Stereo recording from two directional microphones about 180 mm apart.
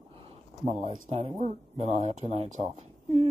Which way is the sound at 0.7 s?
35° right (ahead or behind).